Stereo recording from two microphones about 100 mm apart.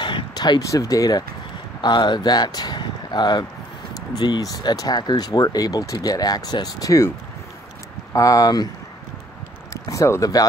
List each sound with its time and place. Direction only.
0.0 s speech: 45° left (ahead or behind)
8.1 s speech: 35° left (ahead or behind)
9.8 s speech: 30° left (ahead or behind)